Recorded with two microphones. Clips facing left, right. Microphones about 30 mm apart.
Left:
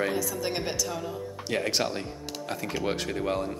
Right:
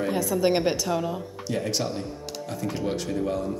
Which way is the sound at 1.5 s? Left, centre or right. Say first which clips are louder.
Even; left.